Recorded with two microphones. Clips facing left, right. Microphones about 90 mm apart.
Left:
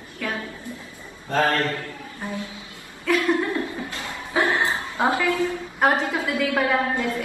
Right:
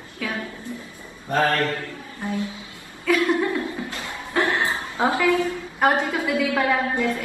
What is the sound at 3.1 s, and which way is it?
Speech, centre (ahead or behind).